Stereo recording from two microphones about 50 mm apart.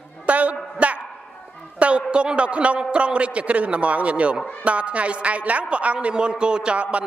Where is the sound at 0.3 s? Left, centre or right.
Right.